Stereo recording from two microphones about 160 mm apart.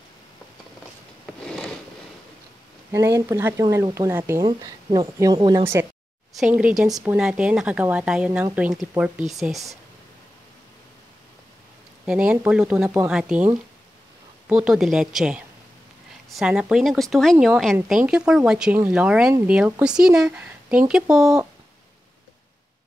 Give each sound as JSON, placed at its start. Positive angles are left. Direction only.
{"t": 1.2, "sound": "a sound", "side_deg": 5}
{"t": 3.2, "sound": "speech", "side_deg": -15}
{"t": 4.5, "sound": "speech", "side_deg": -25}
{"t": 12.1, "sound": "speech", "side_deg": -5}
{"t": 14.5, "sound": "speech", "side_deg": -5}